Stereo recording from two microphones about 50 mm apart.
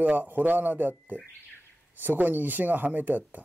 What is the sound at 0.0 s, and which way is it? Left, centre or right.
Speech, right.